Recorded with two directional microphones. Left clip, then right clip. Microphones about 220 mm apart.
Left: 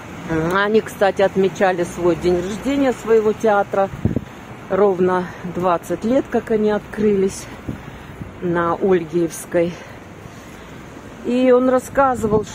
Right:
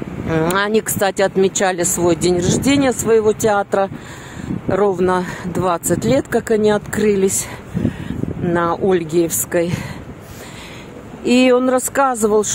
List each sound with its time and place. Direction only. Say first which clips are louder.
0.3 s speech: right 1 dB; 40° right (ahead or behind)
8.5 s speech: right 1 dB; 45° right (ahead or behind)
11.2 s speech: right 1 dB; 45° right (ahead or behind)